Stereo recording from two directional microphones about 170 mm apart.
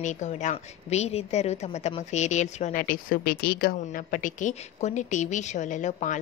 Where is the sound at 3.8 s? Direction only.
50° left (ahead or behind).